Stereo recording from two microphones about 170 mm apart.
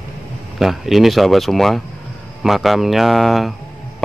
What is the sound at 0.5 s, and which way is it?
Speech, centre (ahead or behind).